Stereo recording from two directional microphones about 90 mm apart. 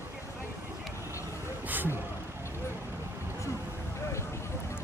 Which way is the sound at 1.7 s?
20° right (ahead or behind).